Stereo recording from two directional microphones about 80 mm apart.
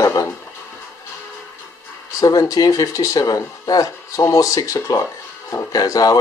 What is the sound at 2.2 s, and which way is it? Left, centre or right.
Speech, left.